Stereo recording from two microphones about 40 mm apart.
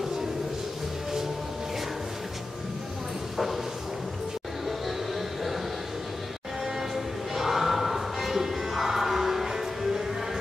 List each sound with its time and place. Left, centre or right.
7.3 s music: centre